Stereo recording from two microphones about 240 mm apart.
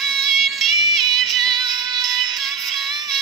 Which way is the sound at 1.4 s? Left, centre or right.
Centre.